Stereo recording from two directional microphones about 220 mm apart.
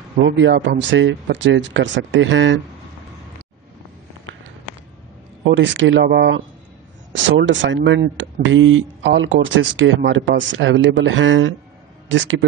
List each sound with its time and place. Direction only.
0.2 s speech: 55° right (ahead or behind)
5.4 s speech: 55° right (ahead or behind)